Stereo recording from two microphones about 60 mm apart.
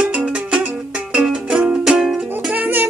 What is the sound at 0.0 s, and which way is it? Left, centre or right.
Music, centre.